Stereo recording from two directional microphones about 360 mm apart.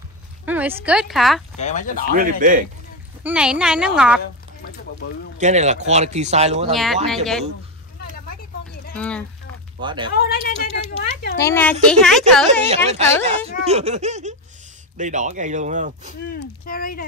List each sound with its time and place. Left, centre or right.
0.5 s a woman's voice: centre
1.6 s speech: centre
2.1 s speech: right
3.3 s a woman's voice: centre
5.4 s a woman's voice: centre
6.7 s a woman's voice: centre
8.9 s speech: centre
9.8 s a woman's voice: centre
10.1 s speech: left
11.0 s a woman's voice: centre
11.4 s a woman's voice: centre
12.4 s a woman's voice: centre
16.3 s speech: left